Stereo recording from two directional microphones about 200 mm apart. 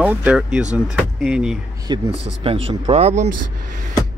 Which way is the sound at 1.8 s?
25° right (ahead or behind).